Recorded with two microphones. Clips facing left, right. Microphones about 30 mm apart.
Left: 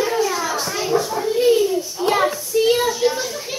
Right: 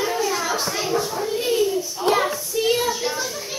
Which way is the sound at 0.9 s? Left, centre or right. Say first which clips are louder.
Left 7 dB; centre.